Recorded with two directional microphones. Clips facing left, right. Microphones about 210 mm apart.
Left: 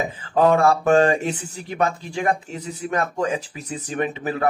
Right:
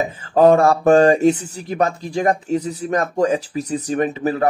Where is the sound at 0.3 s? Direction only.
40° right (ahead or behind).